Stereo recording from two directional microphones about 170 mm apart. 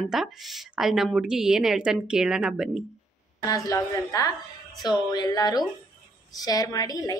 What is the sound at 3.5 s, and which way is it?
A woman's voice, 20° left (ahead or behind).